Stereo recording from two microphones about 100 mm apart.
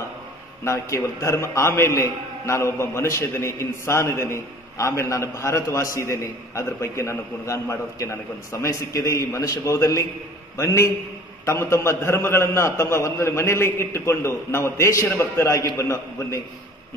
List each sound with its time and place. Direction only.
0.7 s a man's voice: 30° left (ahead or behind)